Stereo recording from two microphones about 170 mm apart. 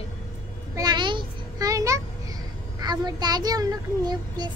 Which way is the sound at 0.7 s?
25° right (ahead or behind).